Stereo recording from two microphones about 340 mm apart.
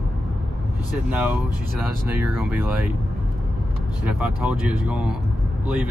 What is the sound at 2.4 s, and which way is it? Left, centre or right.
Speech, centre.